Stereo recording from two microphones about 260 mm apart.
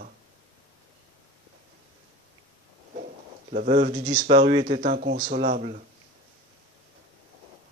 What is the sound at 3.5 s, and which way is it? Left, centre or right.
Speech, right.